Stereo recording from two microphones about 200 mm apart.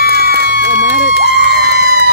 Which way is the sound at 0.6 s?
60° left (ahead or behind).